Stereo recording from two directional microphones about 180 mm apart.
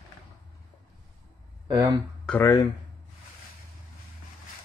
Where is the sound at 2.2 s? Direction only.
10° left (ahead or behind).